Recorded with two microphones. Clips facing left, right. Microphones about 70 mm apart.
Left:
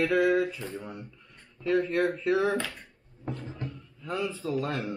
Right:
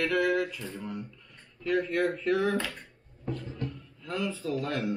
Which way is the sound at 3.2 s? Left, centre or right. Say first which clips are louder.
Right 1 dB; left.